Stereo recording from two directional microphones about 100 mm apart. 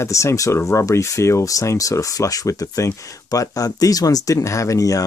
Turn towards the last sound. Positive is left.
turn(degrees=35)  # may be behind; listen again after turning